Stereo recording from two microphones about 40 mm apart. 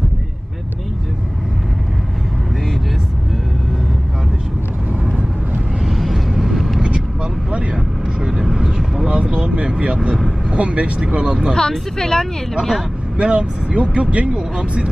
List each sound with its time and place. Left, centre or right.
5.9 s vehicle: centre
7.7 s vehicle: centre
9.0 s vehicle: right
11.5 s speech: centre
13.2 s speech: right